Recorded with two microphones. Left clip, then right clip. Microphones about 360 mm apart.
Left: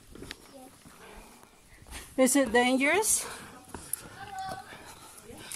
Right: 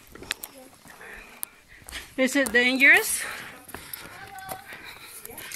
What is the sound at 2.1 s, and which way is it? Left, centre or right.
Speech, centre.